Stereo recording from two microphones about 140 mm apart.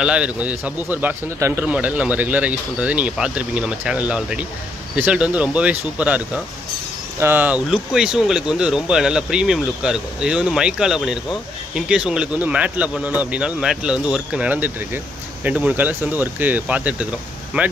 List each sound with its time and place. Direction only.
0.0 s a man's voice: 10° right (ahead or behind)